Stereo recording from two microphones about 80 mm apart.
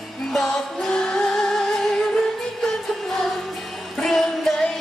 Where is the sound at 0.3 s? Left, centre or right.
Centre.